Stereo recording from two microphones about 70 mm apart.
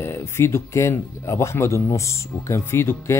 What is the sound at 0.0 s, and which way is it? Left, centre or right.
Speech, left.